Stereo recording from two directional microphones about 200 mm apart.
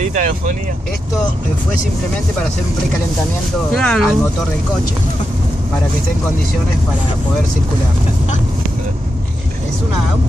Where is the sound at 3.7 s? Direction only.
Centre (ahead or behind).